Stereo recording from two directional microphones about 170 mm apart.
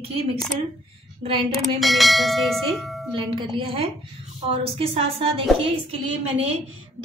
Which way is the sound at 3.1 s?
30° right (ahead or behind).